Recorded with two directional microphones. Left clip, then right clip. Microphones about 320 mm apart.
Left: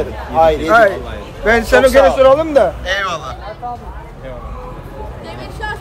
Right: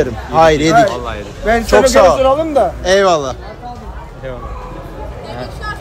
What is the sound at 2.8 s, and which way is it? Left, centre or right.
Speech, centre.